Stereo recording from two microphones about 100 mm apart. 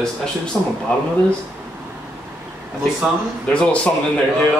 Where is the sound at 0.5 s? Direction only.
Centre (ahead or behind).